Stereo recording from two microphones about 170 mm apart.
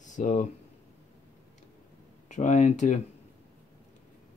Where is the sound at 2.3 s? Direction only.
45° left (ahead or behind).